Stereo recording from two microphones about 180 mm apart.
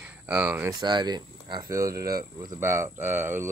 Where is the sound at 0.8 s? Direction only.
25° right (ahead or behind).